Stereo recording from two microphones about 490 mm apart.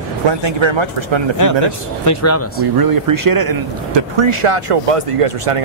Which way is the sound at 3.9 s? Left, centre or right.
Right.